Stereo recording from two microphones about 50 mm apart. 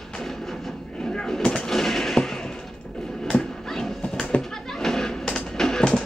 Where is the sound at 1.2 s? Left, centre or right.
Centre.